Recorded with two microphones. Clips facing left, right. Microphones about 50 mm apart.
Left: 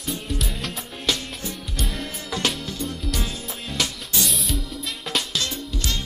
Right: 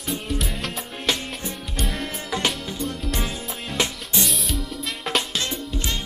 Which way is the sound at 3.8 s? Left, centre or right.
Right.